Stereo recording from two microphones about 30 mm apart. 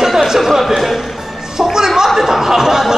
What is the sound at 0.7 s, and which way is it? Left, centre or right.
Music, centre.